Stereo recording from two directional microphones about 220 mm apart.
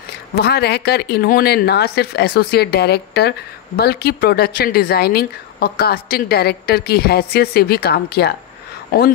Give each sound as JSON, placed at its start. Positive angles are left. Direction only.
{"t": 0.4, "sound": "speech", "side_deg": 45}